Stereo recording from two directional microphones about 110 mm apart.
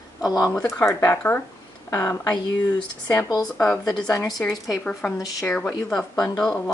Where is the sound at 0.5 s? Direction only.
25° left (ahead or behind).